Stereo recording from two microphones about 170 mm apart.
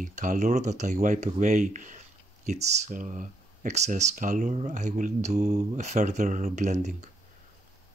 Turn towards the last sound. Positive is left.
turn(degrees=-45)  # may be behind; listen again after turning